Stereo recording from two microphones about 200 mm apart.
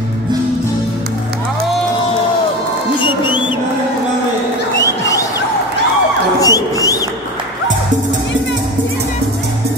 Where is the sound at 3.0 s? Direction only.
25° left (ahead or behind).